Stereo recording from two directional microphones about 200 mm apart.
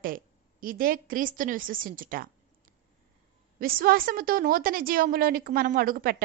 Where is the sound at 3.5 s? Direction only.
45° right (ahead or behind).